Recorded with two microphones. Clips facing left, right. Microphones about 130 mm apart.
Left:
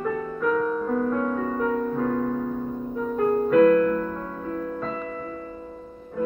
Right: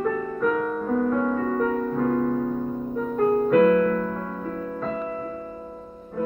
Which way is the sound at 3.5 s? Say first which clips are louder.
Left 2 dB; 5° right (ahead or behind).